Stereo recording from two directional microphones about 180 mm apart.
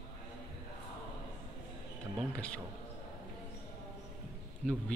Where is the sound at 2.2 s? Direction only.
5° left (ahead or behind).